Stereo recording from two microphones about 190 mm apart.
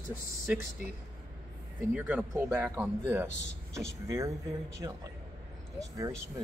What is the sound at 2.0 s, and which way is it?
Speech, 10° right (ahead or behind).